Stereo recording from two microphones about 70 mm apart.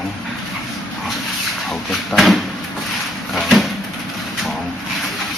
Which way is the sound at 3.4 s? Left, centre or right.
Centre.